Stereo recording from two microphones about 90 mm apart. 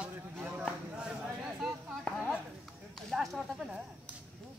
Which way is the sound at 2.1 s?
15° left (ahead or behind).